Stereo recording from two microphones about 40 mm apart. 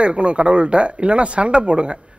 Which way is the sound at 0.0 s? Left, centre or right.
Right.